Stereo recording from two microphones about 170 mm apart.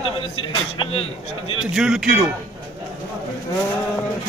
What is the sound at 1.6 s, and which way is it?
Speech, 5° right (ahead or behind).